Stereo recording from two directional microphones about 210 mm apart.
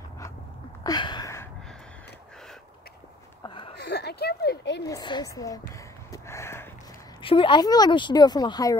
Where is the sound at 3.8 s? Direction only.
50° left (ahead or behind).